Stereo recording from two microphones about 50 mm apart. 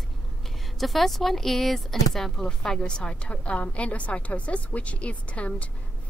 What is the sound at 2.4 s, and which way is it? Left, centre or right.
A woman's voice, centre.